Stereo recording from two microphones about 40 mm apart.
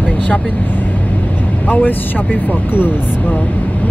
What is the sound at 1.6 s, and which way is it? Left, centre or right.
Speech, left.